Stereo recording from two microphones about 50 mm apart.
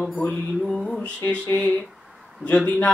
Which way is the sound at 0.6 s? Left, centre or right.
Centre.